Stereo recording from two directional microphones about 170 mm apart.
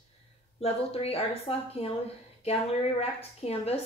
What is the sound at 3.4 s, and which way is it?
Speech, 35° left (ahead or behind).